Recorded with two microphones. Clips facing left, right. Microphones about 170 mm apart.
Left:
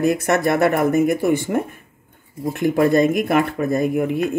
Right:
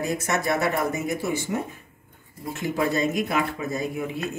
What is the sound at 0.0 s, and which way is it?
Speech, 60° left (ahead or behind).